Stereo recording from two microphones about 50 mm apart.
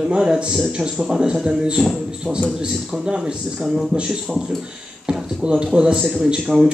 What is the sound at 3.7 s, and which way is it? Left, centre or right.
A man's voice, centre.